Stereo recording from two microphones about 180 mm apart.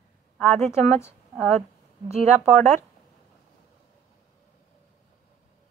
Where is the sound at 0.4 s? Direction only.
15° left (ahead or behind).